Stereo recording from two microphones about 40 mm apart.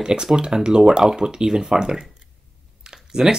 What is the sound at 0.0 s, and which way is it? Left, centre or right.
Speech, centre.